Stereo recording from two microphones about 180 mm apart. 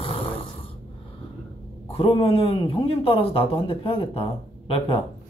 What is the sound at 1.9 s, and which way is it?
A man's voice, 30° left (ahead or behind).